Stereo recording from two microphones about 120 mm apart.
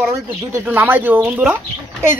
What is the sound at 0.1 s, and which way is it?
Speech, 20° right (ahead or behind).